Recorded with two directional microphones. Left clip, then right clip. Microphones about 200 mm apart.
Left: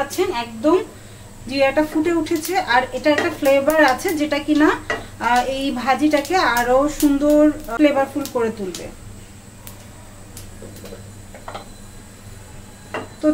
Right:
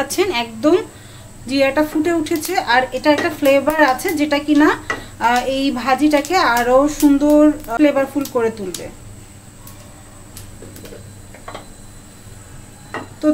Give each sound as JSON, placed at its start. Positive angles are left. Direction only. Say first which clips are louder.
{"t": 0.2, "sound": "a woman's voice", "louder": "right 4 dB", "side_deg": -40}
{"t": 1.5, "sound": "a woman's voice", "louder": "right 1 dB", "side_deg": -30}